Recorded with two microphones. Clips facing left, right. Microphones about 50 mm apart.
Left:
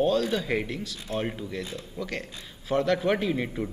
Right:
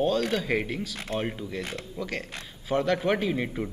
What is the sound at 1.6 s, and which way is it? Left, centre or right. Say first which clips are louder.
Speech: right 1 dB; right.